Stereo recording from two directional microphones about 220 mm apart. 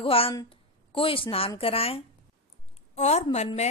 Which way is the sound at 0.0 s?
25° left (ahead or behind).